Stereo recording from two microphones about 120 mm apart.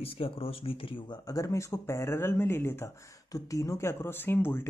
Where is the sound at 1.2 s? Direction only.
25° left (ahead or behind).